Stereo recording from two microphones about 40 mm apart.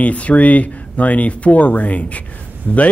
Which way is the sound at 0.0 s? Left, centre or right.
Left.